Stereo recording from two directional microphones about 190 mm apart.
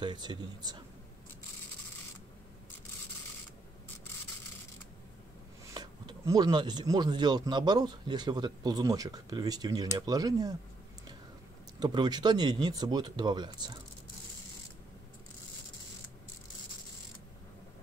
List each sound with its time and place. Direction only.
0.0 s speech: 25° right (ahead or behind)
5.7 s speech: 20° right (ahead or behind)
11.8 s speech: 20° right (ahead or behind)